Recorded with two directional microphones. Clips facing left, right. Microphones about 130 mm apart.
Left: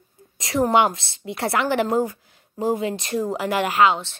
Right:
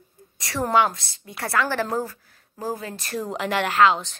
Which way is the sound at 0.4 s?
25° left (ahead or behind).